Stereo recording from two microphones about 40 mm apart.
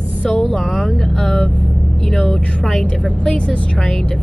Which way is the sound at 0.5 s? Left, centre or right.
Centre.